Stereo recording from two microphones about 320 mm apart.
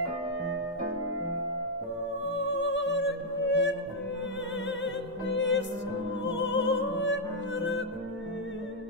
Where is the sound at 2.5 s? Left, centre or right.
Left.